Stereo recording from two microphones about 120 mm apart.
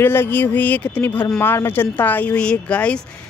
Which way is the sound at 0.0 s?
20° left (ahead or behind).